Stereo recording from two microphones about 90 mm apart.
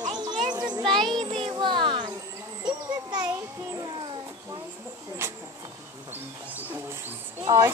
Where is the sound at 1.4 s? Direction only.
75° right (ahead or behind).